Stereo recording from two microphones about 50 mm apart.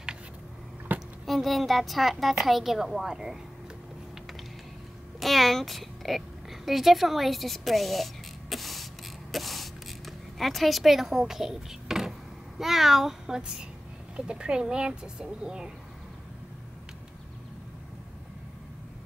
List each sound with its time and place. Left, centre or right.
0.9 s a sound: right
1.2 s a woman's voice: centre
5.2 s a woman's voice: centre
9.3 s a sound: centre
12.5 s speech: centre
14.1 s speech: centre